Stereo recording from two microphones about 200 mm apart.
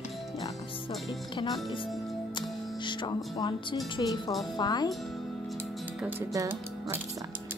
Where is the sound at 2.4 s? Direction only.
20° left (ahead or behind).